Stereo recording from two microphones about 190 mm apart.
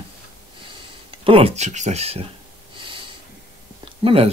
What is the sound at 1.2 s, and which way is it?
Speech, 30° right (ahead or behind).